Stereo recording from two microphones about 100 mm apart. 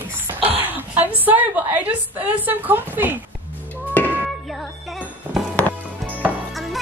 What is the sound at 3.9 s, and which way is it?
Music, 20° left (ahead or behind).